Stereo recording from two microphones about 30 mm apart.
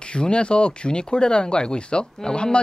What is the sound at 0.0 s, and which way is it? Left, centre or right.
Speech, left.